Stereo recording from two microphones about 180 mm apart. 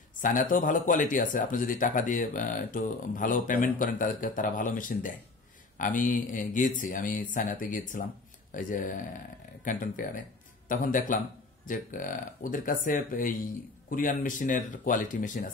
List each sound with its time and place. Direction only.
0.2 s speech: 45° left (ahead or behind)